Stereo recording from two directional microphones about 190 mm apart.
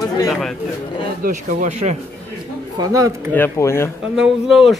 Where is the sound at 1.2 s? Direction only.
40° right (ahead or behind).